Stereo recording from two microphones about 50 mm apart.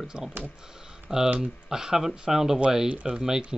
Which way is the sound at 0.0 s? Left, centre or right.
Centre.